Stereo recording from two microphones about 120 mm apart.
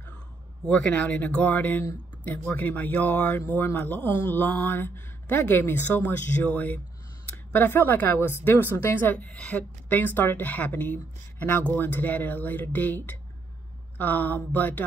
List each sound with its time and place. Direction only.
0.7 s a woman's voice: 10° left (ahead or behind)